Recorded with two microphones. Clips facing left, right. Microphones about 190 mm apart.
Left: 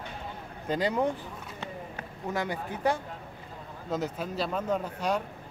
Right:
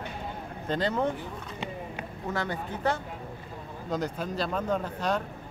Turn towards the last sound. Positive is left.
turn(degrees=5)  # may be behind; listen again after turning